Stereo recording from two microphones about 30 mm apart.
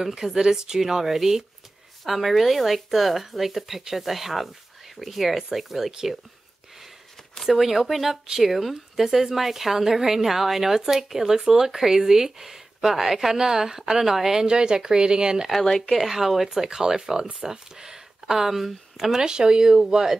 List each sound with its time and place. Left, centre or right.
0.0 s a woman's voice: centre
7.4 s a woman's voice: centre
14.4 s speech: right
15.9 s a woman's voice: centre
19.2 s speech: right